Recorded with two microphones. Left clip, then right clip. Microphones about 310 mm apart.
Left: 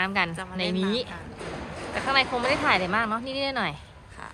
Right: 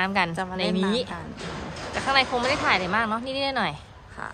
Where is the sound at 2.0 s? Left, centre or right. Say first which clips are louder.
Right 1 dB; centre.